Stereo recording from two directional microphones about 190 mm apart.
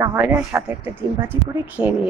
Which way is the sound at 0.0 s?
10° right (ahead or behind).